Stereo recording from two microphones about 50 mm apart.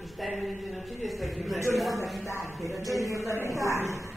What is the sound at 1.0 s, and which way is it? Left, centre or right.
Speech, centre.